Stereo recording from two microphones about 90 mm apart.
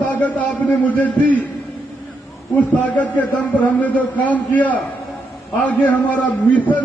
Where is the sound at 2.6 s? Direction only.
15° left (ahead or behind).